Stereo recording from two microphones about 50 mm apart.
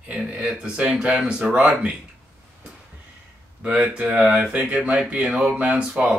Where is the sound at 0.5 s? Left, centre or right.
Right.